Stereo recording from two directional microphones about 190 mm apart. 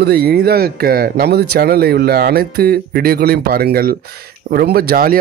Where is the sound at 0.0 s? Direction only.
55° right (ahead or behind).